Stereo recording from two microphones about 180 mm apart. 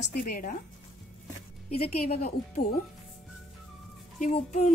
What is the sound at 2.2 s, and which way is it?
Speech, 50° left (ahead or behind).